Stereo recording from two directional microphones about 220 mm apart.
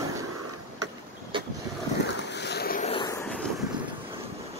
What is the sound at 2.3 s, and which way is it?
Boat, 50° left (ahead or behind).